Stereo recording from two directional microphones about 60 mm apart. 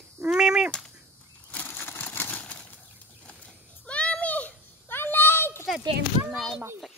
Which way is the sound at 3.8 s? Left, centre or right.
Left.